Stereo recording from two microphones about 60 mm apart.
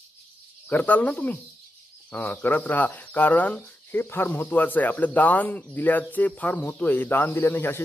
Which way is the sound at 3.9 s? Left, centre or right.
Left.